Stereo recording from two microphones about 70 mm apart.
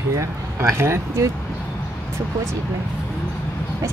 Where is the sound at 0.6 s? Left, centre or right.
Right.